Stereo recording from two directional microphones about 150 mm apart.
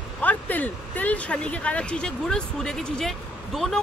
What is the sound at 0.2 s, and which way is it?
Speech, 10° left (ahead or behind).